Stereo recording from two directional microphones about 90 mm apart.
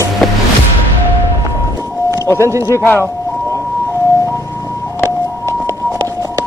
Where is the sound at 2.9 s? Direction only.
30° left (ahead or behind).